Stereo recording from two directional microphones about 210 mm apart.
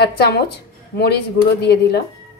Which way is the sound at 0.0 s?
50° left (ahead or behind).